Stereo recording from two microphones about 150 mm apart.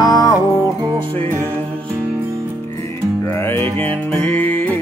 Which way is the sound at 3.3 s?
15° left (ahead or behind).